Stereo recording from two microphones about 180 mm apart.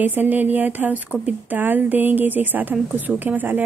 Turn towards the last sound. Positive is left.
turn(degrees=-10)  # may be behind; listen again after turning